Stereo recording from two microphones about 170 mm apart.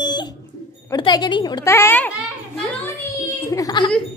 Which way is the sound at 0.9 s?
25° left (ahead or behind).